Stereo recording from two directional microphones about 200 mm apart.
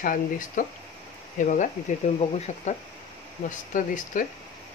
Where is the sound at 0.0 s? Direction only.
40° left (ahead or behind).